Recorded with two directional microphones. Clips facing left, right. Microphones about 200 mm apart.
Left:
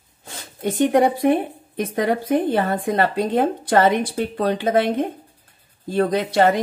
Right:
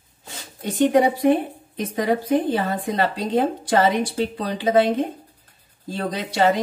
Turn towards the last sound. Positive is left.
turn(degrees=55)  # may be behind; listen again after turning